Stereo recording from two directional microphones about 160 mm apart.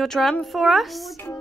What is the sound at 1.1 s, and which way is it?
Speech, 20° left (ahead or behind).